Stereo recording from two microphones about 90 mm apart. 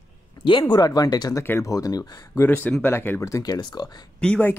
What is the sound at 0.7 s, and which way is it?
Speech, 45° left (ahead or behind).